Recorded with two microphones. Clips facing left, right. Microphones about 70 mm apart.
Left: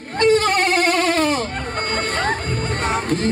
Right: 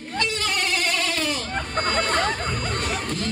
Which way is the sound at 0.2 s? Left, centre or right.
Left.